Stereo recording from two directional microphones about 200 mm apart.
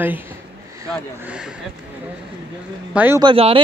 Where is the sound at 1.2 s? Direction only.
5° right (ahead or behind).